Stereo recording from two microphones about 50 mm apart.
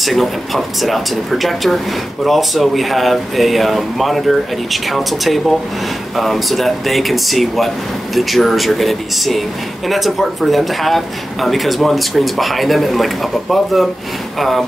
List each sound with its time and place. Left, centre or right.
0.0 s speech: centre